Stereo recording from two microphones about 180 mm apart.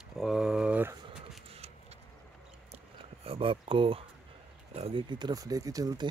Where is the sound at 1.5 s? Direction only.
35° right (ahead or behind).